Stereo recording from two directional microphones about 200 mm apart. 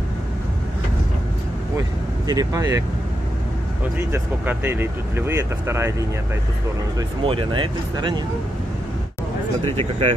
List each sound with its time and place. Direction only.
1.8 s speech: 15° right (ahead or behind)
4.1 s speech: 10° right (ahead or behind)
9.8 s speech: 30° right (ahead or behind)